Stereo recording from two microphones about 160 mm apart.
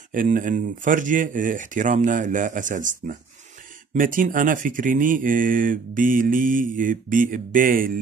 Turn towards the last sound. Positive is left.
turn(degrees=-60)  # may be behind; listen again after turning